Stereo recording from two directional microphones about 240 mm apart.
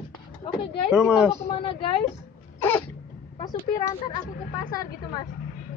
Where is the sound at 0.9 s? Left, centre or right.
Centre.